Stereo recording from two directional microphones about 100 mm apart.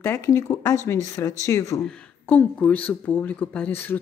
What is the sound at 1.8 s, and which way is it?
Speech, 15° left (ahead or behind).